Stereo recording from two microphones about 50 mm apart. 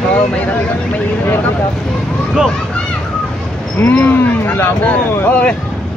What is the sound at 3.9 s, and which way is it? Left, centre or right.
Speech, left.